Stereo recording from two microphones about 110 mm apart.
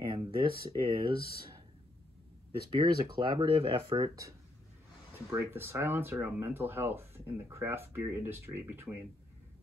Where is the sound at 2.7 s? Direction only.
50° right (ahead or behind).